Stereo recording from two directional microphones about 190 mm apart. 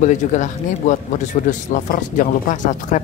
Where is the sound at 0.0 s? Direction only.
40° left (ahead or behind).